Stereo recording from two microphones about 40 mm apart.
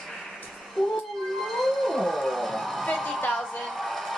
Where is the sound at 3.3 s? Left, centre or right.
Centre.